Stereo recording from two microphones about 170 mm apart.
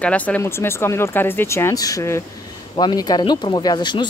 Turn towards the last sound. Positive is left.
turn(degrees=25)  # may be behind; listen again after turning